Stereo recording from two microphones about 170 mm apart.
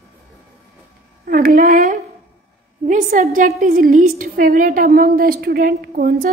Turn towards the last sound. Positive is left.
turn(degrees=-60)  # may be behind; listen again after turning